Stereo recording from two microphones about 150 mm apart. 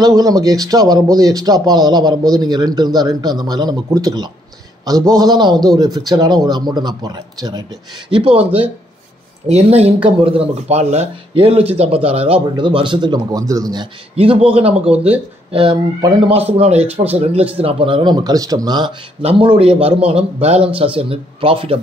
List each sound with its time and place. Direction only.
0.0 s speech: 25° right (ahead or behind)
9.5 s speech: 45° right (ahead or behind); by 13.8 s 25° right (ahead or behind)
14.1 s speech: 40° right (ahead or behind)